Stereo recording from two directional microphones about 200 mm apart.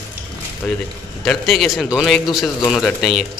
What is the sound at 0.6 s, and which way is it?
Speech, 5° left (ahead or behind).